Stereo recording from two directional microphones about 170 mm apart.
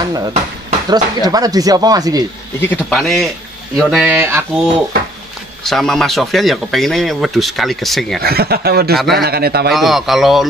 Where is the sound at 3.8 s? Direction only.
5° right (ahead or behind).